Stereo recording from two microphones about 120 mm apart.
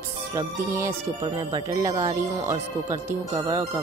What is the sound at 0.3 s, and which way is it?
Speech, 25° right (ahead or behind).